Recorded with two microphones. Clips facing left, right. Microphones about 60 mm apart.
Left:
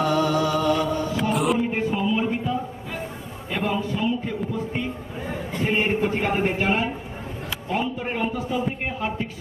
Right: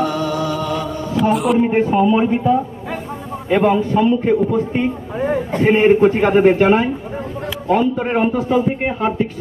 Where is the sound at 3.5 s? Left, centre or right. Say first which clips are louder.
Right 11 dB; right.